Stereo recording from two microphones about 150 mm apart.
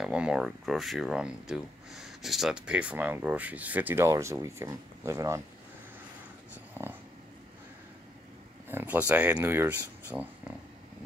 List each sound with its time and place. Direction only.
0.0 s speech: 5° right (ahead or behind)
6.5 s dog: 15° right (ahead or behind)
8.6 s speech: 10° right (ahead or behind)